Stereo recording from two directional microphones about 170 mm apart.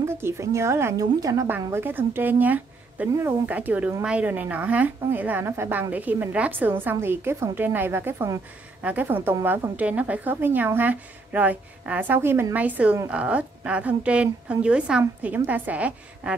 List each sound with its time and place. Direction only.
0.0 s a woman's voice: 15° right (ahead or behind)